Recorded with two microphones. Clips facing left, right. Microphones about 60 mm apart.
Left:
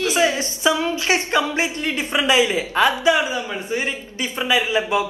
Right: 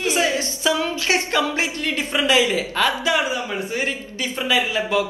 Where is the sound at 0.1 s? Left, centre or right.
Left.